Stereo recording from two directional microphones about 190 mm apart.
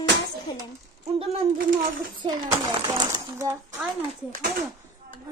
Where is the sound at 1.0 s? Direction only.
30° right (ahead or behind).